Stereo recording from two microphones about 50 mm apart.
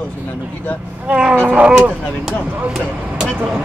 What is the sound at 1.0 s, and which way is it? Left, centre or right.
Speech, centre.